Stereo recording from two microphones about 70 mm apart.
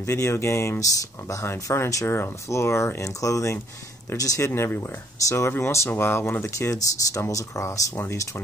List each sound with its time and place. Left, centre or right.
0.0 s speech: left
4.6 s speech: left
6.7 s speech: left